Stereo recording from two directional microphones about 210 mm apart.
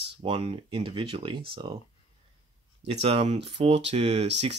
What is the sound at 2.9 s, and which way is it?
Speech, 30° right (ahead or behind).